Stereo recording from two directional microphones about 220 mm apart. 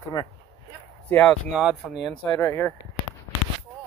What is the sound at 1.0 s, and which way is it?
Speech, 10° left (ahead or behind).